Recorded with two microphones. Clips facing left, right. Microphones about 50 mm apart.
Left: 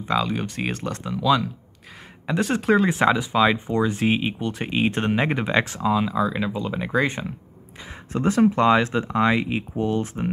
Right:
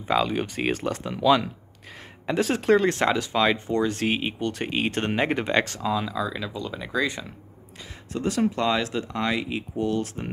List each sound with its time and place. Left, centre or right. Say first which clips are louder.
0.0 s speech: even; centre
2.2 s speech: even; centre; by 6.9 s left
6.9 s speech: left 3 dB; left